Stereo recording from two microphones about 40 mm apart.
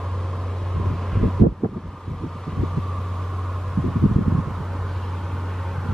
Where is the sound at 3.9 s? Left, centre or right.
Centre.